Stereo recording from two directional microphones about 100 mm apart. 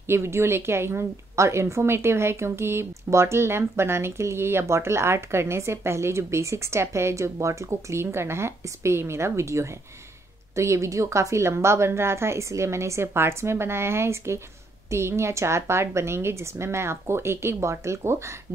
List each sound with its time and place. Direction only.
0.0 s a woman's voice: 25° right (ahead or behind)